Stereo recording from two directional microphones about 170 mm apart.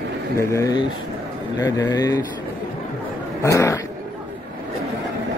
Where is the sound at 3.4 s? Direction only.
15° left (ahead or behind).